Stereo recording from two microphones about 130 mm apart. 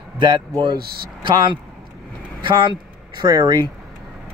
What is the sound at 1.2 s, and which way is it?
Speech, 35° right (ahead or behind).